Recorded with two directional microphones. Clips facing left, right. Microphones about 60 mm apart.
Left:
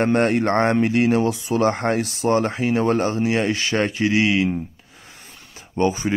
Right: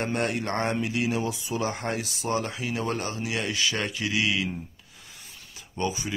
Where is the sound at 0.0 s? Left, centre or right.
Left.